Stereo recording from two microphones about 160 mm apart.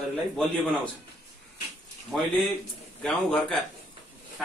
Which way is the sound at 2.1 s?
Centre (ahead or behind).